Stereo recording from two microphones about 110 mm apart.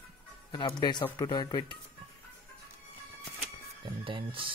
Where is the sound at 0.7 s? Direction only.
40° left (ahead or behind).